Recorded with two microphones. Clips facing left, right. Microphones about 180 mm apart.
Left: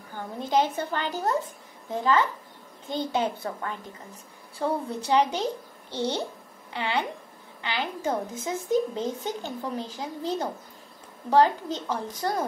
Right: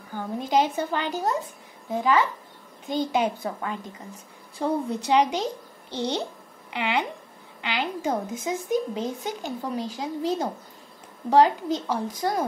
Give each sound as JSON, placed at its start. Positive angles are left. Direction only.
{"t": 0.4, "sound": "speech", "side_deg": -15}